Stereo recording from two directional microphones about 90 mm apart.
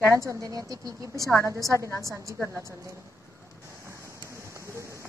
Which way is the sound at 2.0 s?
Centre (ahead or behind).